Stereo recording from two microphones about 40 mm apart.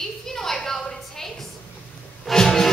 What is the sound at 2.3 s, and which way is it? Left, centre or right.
Music, centre.